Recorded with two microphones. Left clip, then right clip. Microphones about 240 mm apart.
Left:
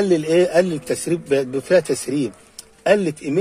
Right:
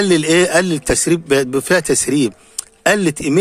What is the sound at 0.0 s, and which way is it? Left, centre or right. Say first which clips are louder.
A man's voice: right 3 dB; right.